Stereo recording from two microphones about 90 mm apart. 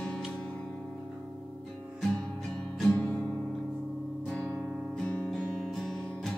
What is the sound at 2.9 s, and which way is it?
Music, 15° left (ahead or behind).